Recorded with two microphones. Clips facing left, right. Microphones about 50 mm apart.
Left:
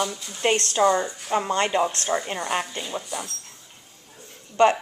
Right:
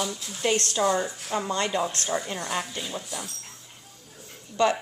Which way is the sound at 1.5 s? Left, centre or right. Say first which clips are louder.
Left 4 dB; left.